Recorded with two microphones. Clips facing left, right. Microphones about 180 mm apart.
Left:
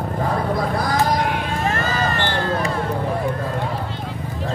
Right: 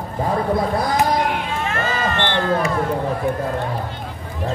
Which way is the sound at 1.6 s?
40° left (ahead or behind).